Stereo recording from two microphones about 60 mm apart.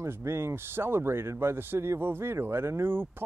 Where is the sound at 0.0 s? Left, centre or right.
Right.